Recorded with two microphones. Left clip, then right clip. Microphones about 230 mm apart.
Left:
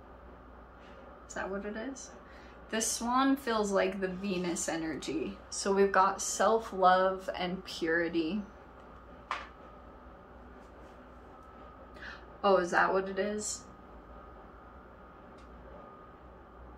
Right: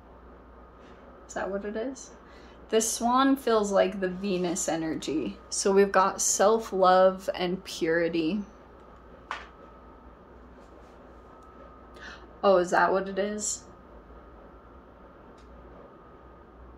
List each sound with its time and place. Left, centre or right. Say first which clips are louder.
1.3 s a woman's voice: right 6 dB; right
12.0 s speech: right 5 dB; right